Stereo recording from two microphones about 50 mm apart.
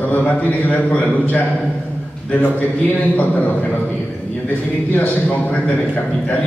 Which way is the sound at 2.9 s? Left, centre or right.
Left.